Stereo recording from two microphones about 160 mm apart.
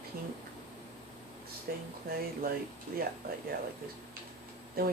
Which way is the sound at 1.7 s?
70° right (ahead or behind).